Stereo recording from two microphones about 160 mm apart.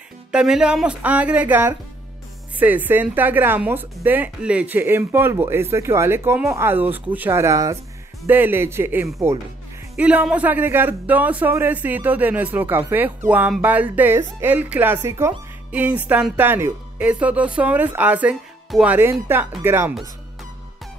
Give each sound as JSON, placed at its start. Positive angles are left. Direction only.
{"t": 0.3, "sound": "speech", "side_deg": -5}